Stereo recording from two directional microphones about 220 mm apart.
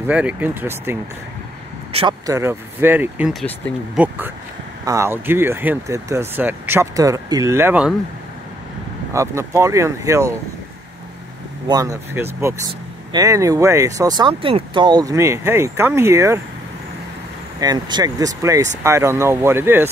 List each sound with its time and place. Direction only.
0.0 s speech: 5° right (ahead or behind)
1.9 s speech: 25° right (ahead or behind)
2.2 s speech: 10° right (ahead or behind)
3.4 s speech: 5° left (ahead or behind)
4.8 s speech: 15° right (ahead or behind)
9.1 s speech: 15° right (ahead or behind)
11.6 s speech: 15° right (ahead or behind)
17.6 s speech: 20° right (ahead or behind)